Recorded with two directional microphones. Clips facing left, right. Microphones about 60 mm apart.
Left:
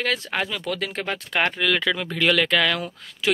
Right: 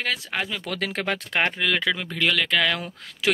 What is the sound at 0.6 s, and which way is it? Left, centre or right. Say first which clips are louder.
Speech: even; right.